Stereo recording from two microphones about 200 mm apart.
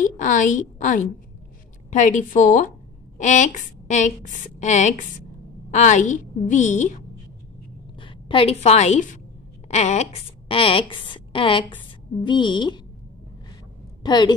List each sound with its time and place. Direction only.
0.0 s a woman's voice: 40° left (ahead or behind)
8.0 s a woman's voice: 25° left (ahead or behind)
14.0 s a woman's voice: 20° left (ahead or behind)